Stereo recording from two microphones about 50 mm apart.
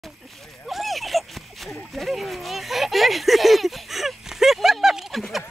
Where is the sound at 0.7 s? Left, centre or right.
Centre.